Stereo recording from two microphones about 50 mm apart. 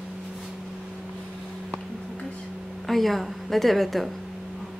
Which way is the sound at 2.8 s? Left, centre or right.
Centre.